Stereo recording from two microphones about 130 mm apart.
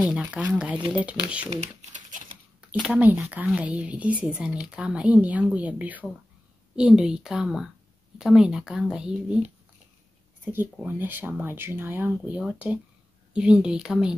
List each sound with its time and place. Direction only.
0.0 s speech: 5° right (ahead or behind)
1.5 s a sound: 60° right (ahead or behind); by 2.3 s 80° right
2.8 s speech: 10° right (ahead or behind)
10.4 s speech: 15° right (ahead or behind)